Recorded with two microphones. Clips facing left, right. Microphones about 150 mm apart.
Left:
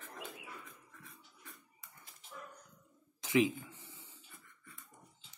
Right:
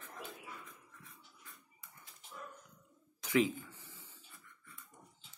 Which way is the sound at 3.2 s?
20° left (ahead or behind).